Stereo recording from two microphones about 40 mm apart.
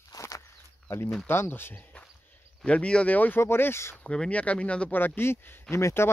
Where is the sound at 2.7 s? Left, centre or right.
Left.